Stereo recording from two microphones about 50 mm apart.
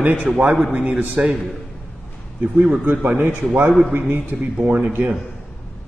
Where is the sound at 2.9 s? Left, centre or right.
Right.